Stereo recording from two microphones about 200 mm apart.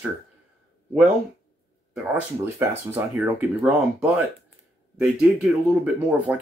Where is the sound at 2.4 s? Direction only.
10° right (ahead or behind).